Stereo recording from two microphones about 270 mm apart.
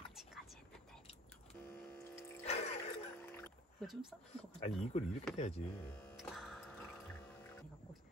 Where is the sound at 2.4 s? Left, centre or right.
Left.